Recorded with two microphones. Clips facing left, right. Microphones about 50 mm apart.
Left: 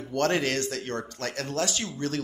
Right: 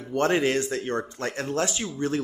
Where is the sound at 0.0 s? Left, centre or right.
Centre.